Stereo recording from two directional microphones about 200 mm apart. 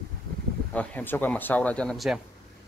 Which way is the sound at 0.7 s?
5° left (ahead or behind).